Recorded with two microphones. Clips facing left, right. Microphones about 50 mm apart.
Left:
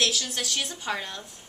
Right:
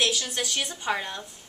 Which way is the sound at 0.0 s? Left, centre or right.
Centre.